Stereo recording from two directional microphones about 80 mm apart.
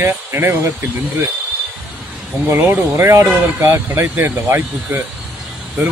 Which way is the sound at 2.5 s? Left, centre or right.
Right.